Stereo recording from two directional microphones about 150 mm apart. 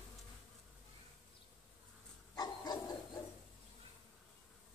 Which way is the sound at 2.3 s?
25° left (ahead or behind).